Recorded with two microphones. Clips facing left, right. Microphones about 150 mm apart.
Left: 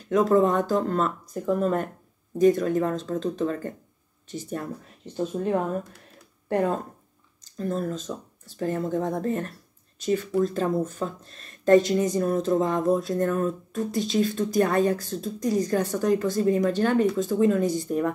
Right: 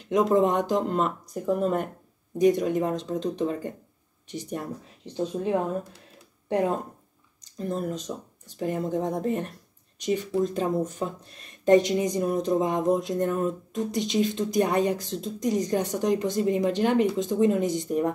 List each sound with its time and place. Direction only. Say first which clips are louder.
0.0 s speech: left 1 dB; 20° right (ahead or behind)